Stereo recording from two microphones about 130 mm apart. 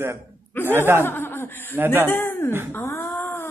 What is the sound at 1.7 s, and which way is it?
Speech, 15° right (ahead or behind).